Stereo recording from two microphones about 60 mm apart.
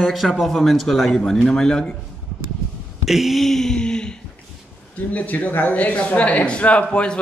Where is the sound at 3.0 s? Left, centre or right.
Centre.